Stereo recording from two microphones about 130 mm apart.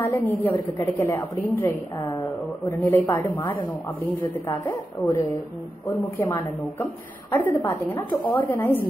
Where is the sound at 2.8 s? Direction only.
20° left (ahead or behind).